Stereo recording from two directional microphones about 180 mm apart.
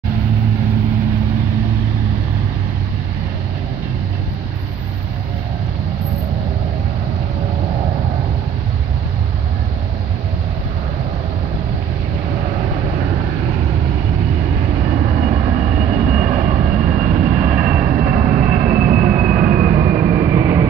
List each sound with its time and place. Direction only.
14.9 s vehicle: 40° right (ahead or behind)
20.1 s vehicle: 20° right (ahead or behind)